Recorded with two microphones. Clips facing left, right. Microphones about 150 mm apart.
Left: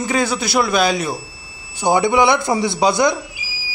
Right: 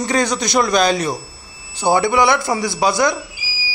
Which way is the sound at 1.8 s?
15° left (ahead or behind).